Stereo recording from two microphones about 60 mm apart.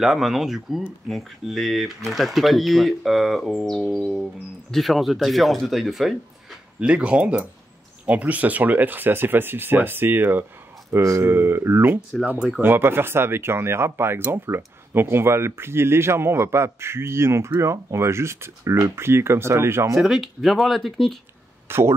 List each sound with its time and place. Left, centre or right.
0.0 s speech: centre
6.8 s speech: centre; by 10.4 s right
10.9 s speech: right
11.3 s speech: right
20.0 s speech: centre
21.6 s speech: right